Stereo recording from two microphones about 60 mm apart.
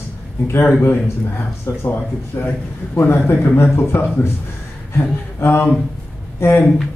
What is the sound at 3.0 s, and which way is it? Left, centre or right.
Speech, left.